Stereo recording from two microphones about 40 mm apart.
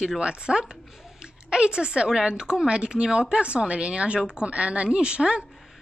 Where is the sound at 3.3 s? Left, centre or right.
Right.